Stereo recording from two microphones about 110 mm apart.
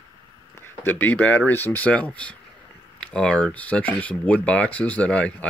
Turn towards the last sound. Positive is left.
turn(degrees=10)  # may be behind; listen again after turning